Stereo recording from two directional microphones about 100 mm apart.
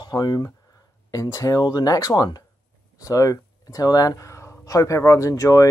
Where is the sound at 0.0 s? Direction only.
45° left (ahead or behind).